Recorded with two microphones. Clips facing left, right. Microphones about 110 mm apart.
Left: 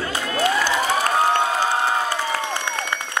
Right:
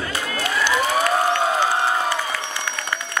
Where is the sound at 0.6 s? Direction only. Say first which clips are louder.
Right 1 dB; 40° left (ahead or behind).